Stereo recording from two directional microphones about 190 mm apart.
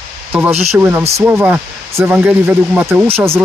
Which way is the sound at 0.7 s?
10° right (ahead or behind).